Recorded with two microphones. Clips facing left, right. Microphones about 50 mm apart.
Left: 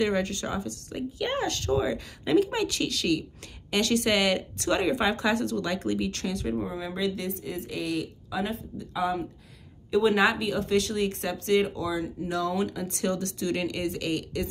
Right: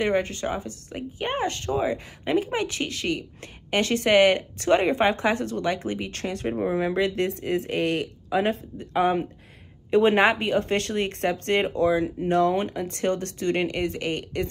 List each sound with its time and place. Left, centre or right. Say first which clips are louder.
0.0 s speech: right 3 dB; right
6.4 s a woman's voice: right 10 dB; right